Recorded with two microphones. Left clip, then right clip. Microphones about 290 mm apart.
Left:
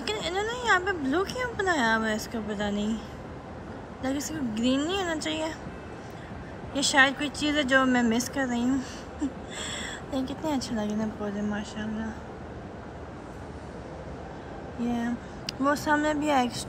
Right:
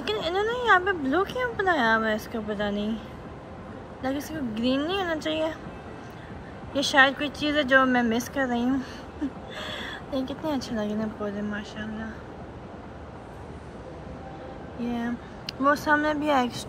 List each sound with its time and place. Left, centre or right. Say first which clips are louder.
0.0 s speech: right 3 dB; centre
4.0 s speech: right 1 dB; centre
6.7 s speech: right 2 dB; centre
14.8 s speech: even; centre